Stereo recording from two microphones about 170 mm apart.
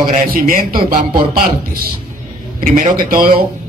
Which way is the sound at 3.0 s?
60° right (ahead or behind).